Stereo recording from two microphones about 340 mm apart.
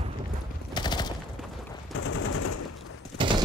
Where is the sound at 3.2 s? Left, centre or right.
Centre.